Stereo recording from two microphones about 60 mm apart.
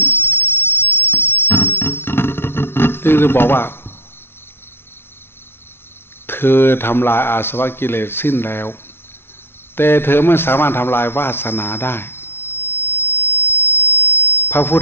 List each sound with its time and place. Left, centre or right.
0.0 s music: left
6.2 s speech: left
9.8 s radio: left